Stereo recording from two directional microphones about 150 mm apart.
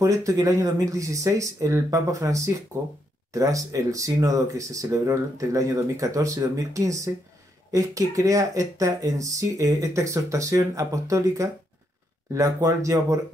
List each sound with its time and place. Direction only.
0.0 s speech: 20° right (ahead or behind)